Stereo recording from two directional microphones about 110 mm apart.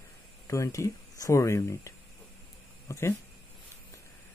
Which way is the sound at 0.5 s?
30° left (ahead or behind).